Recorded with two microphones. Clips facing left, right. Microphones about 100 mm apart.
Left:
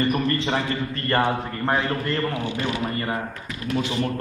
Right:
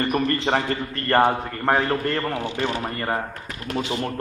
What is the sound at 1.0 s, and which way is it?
A man's voice, 45° right (ahead or behind).